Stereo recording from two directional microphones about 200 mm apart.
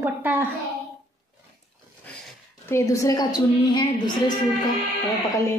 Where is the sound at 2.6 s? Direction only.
15° left (ahead or behind).